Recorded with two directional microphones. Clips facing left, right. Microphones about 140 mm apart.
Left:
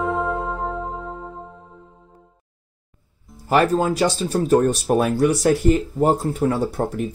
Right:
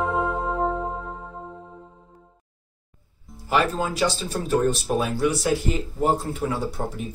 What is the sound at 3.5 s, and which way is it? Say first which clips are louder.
Speech: left 5 dB; 40° left (ahead or behind).